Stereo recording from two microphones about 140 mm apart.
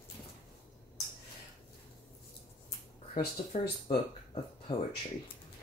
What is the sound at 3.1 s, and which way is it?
Speech, 75° left (ahead or behind).